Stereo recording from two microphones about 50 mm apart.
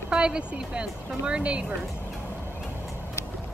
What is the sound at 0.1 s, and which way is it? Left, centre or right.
A woman's voice, centre.